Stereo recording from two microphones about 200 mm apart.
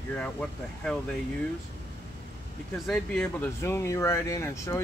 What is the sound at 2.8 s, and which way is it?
Speech, 5° left (ahead or behind).